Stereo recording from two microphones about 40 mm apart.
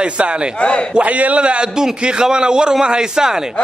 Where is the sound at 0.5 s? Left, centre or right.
Left.